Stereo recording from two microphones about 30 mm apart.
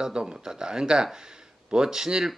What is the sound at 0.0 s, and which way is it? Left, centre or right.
Speech, right.